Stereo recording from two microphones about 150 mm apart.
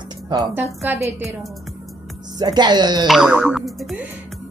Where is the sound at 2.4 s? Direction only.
30° right (ahead or behind).